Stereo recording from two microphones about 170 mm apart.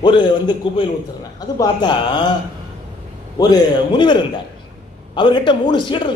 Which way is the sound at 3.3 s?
25° left (ahead or behind).